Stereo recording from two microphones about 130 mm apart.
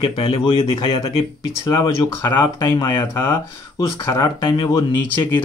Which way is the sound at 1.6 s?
25° left (ahead or behind).